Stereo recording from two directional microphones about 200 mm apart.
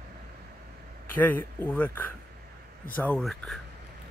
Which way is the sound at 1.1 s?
10° left (ahead or behind).